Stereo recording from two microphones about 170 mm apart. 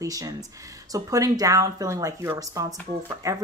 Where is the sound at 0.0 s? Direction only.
20° right (ahead or behind).